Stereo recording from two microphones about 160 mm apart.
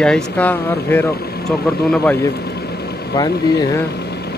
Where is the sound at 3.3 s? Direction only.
85° left.